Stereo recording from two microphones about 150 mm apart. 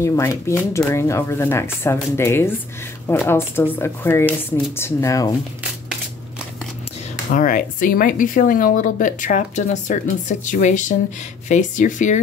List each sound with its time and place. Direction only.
0.0 s speech: 20° left (ahead or behind)
7.2 s speech: 65° left (ahead or behind)